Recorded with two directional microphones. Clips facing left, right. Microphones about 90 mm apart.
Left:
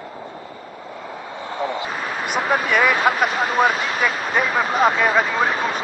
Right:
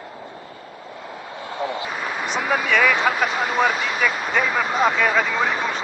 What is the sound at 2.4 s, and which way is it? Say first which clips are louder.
Speech: left 1 dB; 30° left (ahead or behind).